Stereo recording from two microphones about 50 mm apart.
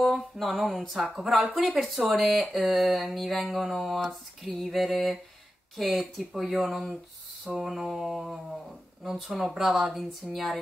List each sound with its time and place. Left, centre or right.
0.0 s speech: centre